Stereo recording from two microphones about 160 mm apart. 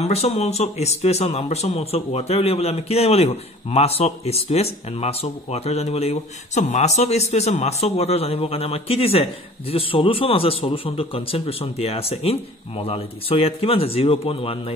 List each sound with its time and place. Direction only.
0.0 s speech: 40° left (ahead or behind)